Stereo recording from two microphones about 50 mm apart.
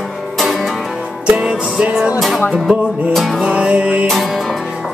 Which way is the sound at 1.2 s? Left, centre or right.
Centre.